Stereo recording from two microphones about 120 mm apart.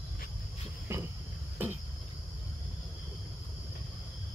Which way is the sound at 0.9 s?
20° right (ahead or behind).